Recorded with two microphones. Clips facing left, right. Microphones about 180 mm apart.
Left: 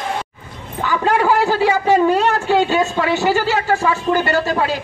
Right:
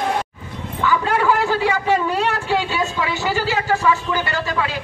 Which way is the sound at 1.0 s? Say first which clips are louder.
Left 6 dB; 40° left (ahead or behind).